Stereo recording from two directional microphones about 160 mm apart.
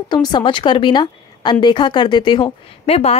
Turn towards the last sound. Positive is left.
turn(degrees=40)  # may be behind; listen again after turning